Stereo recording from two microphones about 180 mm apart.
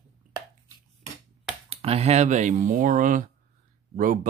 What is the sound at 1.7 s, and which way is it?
Speech, 35° right (ahead or behind).